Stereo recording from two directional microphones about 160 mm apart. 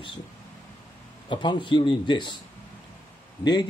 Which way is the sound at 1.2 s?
30° left (ahead or behind).